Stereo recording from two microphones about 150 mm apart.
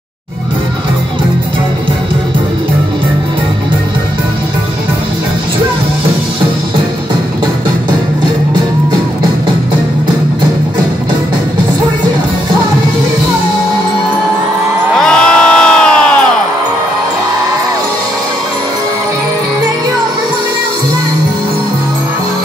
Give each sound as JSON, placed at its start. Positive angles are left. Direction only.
{"t": 15.0, "sound": "crowd", "side_deg": 5}